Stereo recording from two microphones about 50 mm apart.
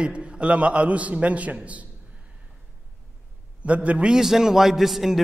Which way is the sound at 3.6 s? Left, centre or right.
Right.